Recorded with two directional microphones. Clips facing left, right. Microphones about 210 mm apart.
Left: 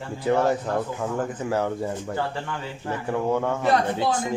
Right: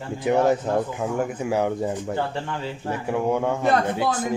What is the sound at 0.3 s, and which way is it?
A man's voice, 15° right (ahead or behind).